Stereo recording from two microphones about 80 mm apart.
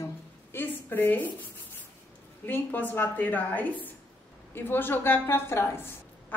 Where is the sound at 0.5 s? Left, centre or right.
Left.